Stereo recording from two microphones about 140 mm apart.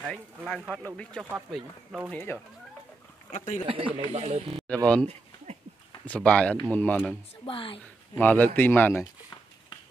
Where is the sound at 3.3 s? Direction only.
65° left (ahead or behind).